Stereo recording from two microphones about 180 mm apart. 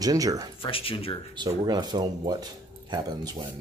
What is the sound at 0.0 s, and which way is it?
Speech, 20° right (ahead or behind).